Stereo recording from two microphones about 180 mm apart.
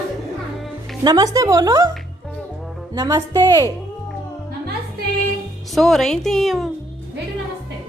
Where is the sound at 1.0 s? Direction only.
20° right (ahead or behind).